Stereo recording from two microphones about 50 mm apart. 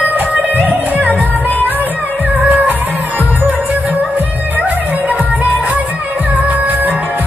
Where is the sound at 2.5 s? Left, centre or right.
Right.